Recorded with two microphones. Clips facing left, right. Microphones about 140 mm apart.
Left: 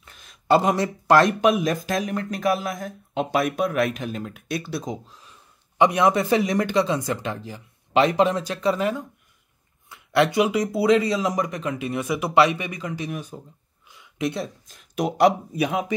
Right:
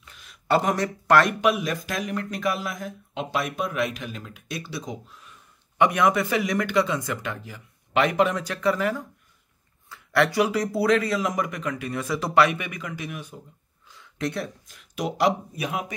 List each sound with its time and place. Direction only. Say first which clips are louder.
0.0 s a sound: even; 40° left (ahead or behind)
0.5 s a man's voice: left 3 dB; 25° left (ahead or behind); by 3.9 s 55° left (ahead or behind)
4.0 s speech: left 6 dB; 45° left (ahead or behind)
5.8 s speech: left 2 dB; 30° left (ahead or behind)
13.8 s a sound: left 3 dB; 15° left (ahead or behind)
14.7 s speech: left 4 dB; 45° left (ahead or behind)